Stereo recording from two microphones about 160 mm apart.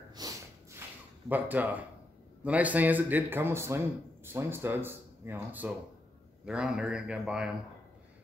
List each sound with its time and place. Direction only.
0.1 s snort: 20° right (ahead or behind)
1.3 s a man's voice: 10° right (ahead or behind)